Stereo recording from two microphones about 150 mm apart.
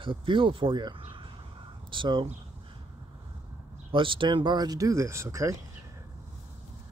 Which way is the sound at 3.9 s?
35° right (ahead or behind).